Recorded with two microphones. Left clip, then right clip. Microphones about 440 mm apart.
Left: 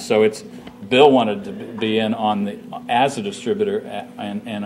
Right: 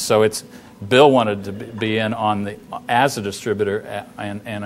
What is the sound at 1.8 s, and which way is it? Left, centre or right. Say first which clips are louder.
Speech: even; right.